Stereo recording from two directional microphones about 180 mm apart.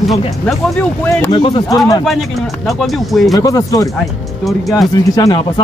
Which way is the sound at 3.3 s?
20° left (ahead or behind).